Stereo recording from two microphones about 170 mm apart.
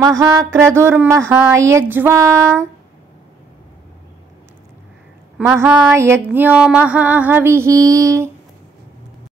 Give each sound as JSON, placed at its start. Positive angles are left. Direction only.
{"t": 0.2, "sound": "music", "side_deg": -20}
{"t": 5.4, "sound": "music", "side_deg": -10}